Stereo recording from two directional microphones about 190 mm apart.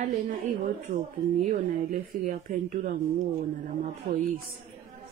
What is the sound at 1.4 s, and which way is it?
Speech, 45° right (ahead or behind).